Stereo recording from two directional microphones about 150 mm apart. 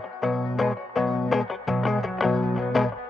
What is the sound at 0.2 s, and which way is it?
Music, centre (ahead or behind).